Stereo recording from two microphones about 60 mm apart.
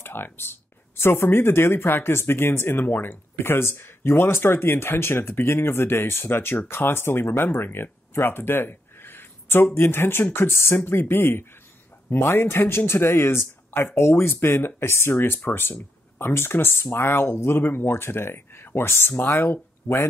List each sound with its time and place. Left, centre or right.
0.0 s speech: left